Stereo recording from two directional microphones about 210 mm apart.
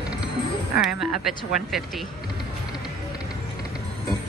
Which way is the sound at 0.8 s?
Centre (ahead or behind).